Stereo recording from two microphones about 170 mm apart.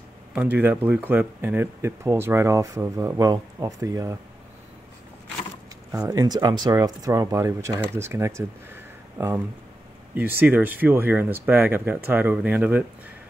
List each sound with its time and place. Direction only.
0.6 s speech: 10° right (ahead or behind)
5.9 s speech: 20° right (ahead or behind)
10.1 s speech: 10° right (ahead or behind)